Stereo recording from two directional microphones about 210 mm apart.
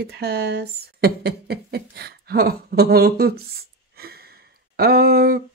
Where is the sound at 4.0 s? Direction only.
50° right (ahead or behind).